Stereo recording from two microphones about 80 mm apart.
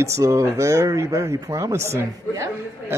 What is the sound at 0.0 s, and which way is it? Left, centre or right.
Speech, right.